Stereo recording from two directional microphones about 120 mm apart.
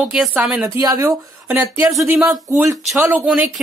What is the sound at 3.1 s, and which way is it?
Speech, 10° right (ahead or behind).